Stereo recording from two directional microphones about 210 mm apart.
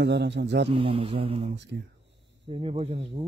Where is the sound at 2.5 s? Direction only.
30° right (ahead or behind).